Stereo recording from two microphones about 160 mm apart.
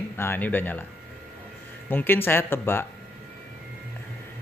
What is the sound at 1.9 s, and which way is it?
Speech, 15° left (ahead or behind).